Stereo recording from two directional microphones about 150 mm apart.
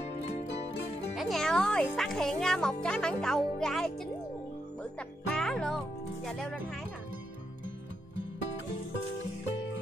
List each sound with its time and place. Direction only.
0.0 s music: 45° left (ahead or behind)
1.1 s a child's voice: centre (ahead or behind)
5.3 s a child's voice: 5° left (ahead or behind)